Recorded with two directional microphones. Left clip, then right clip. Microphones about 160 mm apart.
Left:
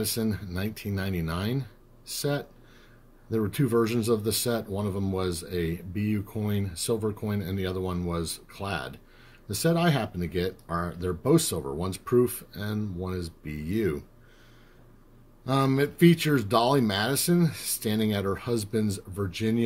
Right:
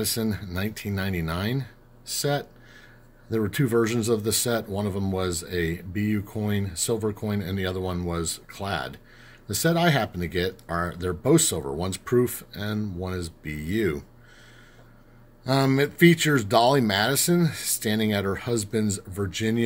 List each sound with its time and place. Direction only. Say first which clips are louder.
0.0 s speech: right 2 dB; 20° right (ahead or behind)
15.4 s speech: right 3 dB; 25° right (ahead or behind)